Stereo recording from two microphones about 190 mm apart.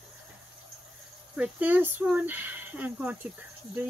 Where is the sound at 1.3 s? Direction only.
10° right (ahead or behind).